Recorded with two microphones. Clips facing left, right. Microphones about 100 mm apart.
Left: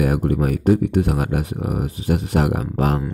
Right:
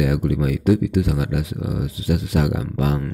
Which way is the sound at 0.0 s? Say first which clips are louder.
Left 1 dB; 45° left (ahead or behind).